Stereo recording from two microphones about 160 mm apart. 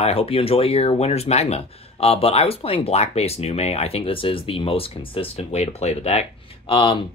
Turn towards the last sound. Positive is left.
turn(degrees=35)  # may be behind; listen again after turning